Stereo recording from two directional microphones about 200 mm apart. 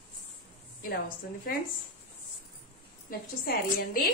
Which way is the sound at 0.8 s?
45° left (ahead or behind).